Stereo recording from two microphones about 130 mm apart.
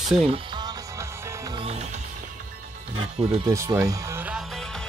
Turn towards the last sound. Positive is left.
turn(degrees=0)  # may be behind; listen again after turning